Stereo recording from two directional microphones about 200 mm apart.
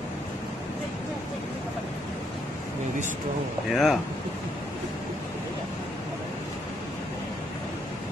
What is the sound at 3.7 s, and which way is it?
Speech, centre (ahead or behind).